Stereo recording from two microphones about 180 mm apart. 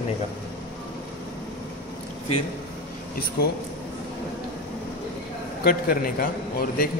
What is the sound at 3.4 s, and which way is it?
Speech, 60° left (ahead or behind).